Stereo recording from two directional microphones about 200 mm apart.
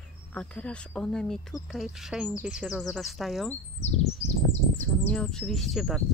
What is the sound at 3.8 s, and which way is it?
Speech, 35° left (ahead or behind).